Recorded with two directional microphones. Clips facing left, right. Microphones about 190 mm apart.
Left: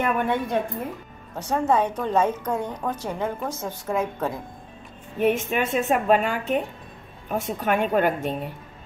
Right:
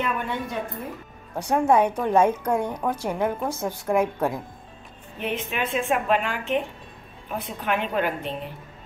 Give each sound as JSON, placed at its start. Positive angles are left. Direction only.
{"t": 0.0, "sound": "a woman's voice", "side_deg": 55}
{"t": 1.3, "sound": "a woman's voice", "side_deg": -10}
{"t": 5.2, "sound": "a woman's voice", "side_deg": 45}